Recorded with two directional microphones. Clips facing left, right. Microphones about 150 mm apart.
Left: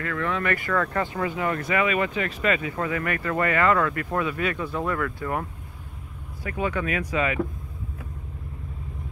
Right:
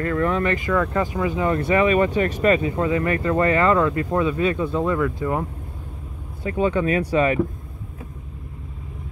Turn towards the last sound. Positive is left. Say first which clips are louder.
# right 6 dB
turn(degrees=-35)  # may be behind; listen again after turning